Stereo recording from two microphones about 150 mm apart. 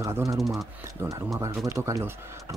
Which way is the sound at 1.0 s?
20° right (ahead or behind).